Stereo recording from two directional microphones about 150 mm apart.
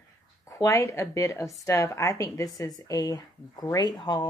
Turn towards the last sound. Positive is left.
turn(degrees=30)  # may be behind; listen again after turning